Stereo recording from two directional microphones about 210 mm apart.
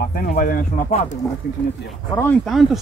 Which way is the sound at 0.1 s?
40° left (ahead or behind).